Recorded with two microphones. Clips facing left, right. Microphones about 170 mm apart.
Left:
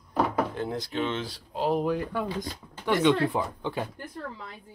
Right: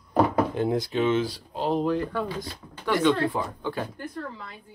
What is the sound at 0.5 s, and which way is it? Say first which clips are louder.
Speech: right 5 dB; 10° right (ahead or behind).